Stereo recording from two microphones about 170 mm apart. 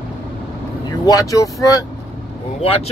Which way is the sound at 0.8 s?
20° left (ahead or behind).